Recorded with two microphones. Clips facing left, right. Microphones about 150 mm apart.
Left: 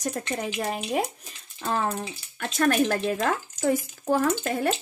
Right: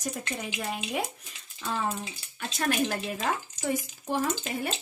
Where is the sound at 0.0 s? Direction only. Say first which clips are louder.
Left 5 dB; 75° left (ahead or behind).